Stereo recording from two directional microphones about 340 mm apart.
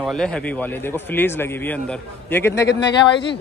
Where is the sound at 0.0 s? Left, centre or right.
Centre.